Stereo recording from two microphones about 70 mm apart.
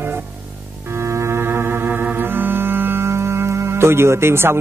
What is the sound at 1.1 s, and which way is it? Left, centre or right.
Organ, right.